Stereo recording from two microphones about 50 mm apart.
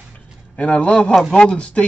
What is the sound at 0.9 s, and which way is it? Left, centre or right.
Speech, centre.